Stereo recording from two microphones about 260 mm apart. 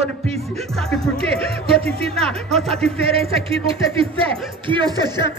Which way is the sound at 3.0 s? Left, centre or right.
Right.